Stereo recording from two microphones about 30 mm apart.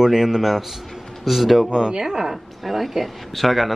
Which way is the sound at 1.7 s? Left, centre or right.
Right.